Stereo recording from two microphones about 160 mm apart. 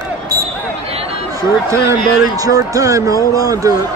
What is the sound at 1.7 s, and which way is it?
Speech, 20° right (ahead or behind).